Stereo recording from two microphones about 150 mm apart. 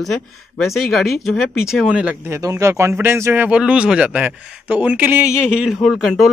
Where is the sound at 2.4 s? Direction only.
20° right (ahead or behind).